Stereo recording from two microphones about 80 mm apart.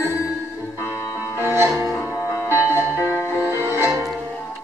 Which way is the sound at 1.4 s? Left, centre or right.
Right.